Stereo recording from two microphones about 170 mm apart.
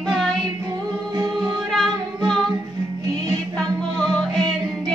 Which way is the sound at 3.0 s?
20° right (ahead or behind).